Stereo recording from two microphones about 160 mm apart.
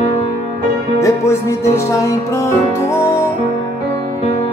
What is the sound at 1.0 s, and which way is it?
Music, 15° left (ahead or behind).